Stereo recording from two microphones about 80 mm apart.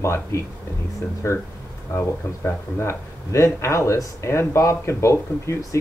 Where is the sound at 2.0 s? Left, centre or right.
Left.